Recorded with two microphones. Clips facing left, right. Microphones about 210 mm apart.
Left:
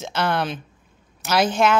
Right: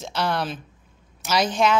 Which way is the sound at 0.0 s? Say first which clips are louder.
Left 2 dB; centre (ahead or behind).